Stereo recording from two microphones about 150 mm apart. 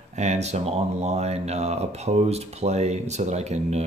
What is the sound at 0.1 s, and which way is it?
Speech, 50° right (ahead or behind).